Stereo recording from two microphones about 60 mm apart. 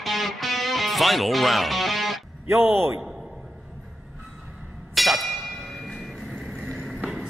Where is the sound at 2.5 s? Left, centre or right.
Right.